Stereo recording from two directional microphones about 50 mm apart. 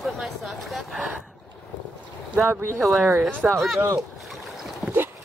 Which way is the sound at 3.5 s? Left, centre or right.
Centre.